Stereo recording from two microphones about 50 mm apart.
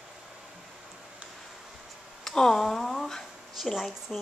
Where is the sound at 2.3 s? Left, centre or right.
Centre.